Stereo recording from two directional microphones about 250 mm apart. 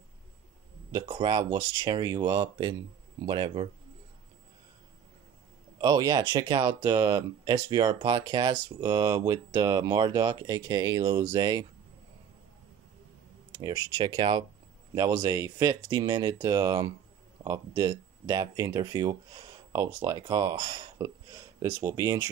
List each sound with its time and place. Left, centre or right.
0.9 s speech: centre
5.8 s speech: centre
13.5 s speech: centre